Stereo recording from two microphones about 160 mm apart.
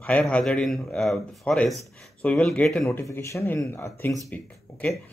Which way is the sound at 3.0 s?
20° left (ahead or behind).